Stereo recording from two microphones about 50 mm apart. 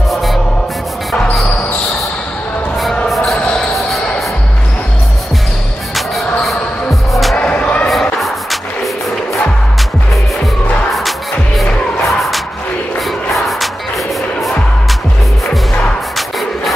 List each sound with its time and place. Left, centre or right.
0.1 s music: centre
5.9 s music: centre
7.3 s music: left
7.9 s music: centre
10.9 s music: centre
16.2 s music: centre